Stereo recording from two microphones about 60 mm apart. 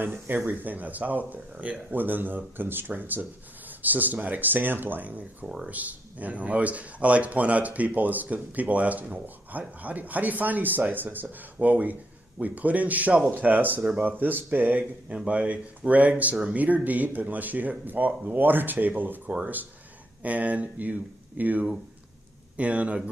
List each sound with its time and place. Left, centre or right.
0.0 s speech: right